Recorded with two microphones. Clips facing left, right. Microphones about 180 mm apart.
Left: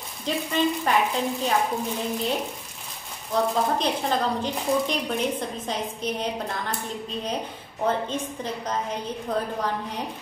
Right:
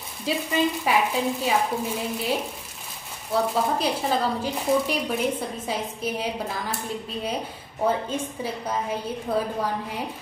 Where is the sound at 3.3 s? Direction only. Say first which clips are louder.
Even; 5° right (ahead or behind).